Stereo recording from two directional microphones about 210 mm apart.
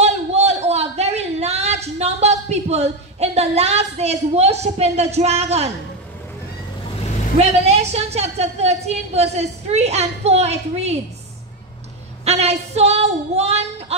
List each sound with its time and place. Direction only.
0.0 s a sound: 30° right (ahead or behind)
7.3 s a woman's voice: 30° right (ahead or behind)
12.3 s a woman's voice: 30° right (ahead or behind)